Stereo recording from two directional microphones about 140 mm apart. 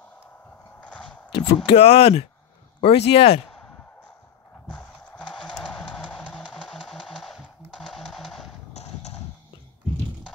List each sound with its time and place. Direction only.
0.7 s a sound: 10° left (ahead or behind)
1.3 s speech: 45° left (ahead or behind)
4.7 s music: 5° left (ahead or behind)
6.4 s typewriter: 5° right (ahead or behind)
8.7 s clip-clop: 50° left (ahead or behind)